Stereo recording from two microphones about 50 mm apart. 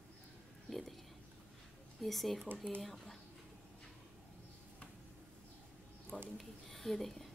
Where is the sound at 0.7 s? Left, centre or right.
Centre.